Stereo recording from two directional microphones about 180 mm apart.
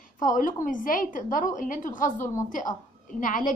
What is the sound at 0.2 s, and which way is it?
A woman's voice, 50° left (ahead or behind).